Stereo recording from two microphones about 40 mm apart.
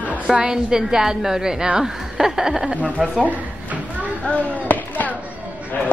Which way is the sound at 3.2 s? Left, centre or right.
Right.